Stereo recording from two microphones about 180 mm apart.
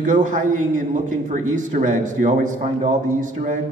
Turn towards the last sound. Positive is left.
turn(degrees=-45)  # may be behind; listen again after turning